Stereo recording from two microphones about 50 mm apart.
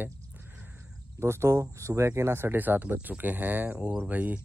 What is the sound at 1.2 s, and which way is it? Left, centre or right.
Speech, right.